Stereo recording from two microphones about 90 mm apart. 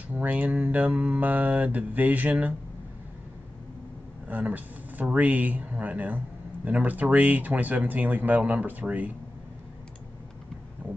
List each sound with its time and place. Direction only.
0.1 s speech: 15° right (ahead or behind)
4.3 s speech: 20° right (ahead or behind)
10.8 s a sound: 20° right (ahead or behind)